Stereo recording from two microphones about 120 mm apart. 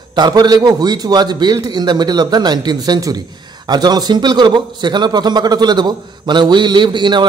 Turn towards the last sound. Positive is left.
turn(degrees=-40)  # may be behind; listen again after turning